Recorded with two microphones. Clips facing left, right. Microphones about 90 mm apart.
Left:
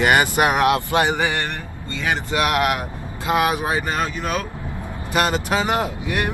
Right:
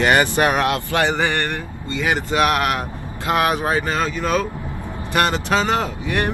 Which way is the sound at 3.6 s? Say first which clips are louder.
Right 2 dB; 15° left (ahead or behind).